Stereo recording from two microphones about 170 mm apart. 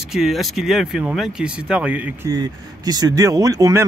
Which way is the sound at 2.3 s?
25° right (ahead or behind).